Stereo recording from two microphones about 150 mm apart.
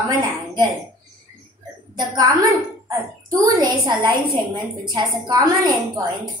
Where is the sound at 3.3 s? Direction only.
25° right (ahead or behind).